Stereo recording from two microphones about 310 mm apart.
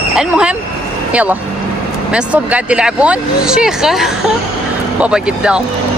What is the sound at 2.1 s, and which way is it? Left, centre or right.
Speech, centre.